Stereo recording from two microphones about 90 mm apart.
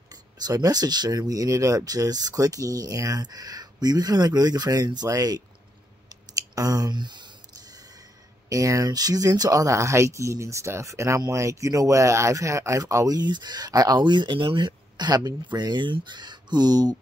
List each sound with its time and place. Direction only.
0.1 s speech: 45° right (ahead or behind)
6.0 s clicking: 45° right (ahead or behind)
8.5 s speech: 40° right (ahead or behind)